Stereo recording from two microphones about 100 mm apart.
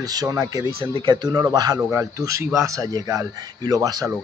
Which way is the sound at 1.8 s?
30° right (ahead or behind).